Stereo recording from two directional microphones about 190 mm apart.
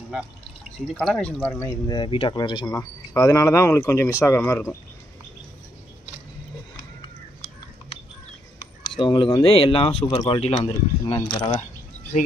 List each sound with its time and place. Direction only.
0.7 s speech: centre (ahead or behind)
1.9 s speech: 25° left (ahead or behind)
8.9 s speech: 25° left (ahead or behind)